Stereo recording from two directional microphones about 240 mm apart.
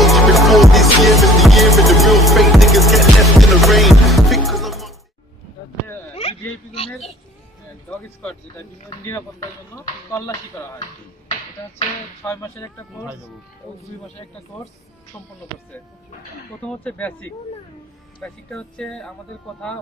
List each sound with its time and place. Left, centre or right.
0.0 s music: centre
6.1 s a sound: left
8.2 s speech: centre
12.2 s speech: centre
16.6 s speech: centre